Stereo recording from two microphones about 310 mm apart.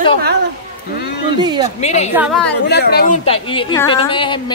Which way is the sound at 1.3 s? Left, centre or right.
Centre.